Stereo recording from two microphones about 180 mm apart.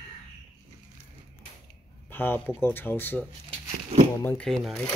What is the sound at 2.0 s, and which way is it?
Speech, 10° left (ahead or behind).